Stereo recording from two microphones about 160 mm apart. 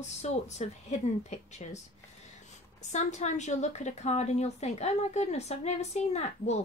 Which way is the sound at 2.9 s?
45° left (ahead or behind).